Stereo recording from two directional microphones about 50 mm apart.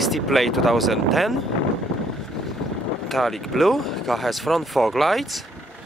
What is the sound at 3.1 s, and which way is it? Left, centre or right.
Speech, centre.